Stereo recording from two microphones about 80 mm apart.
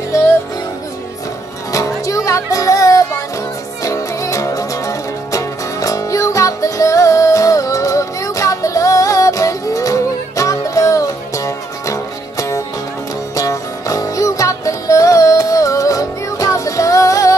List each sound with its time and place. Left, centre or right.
1.7 s music: left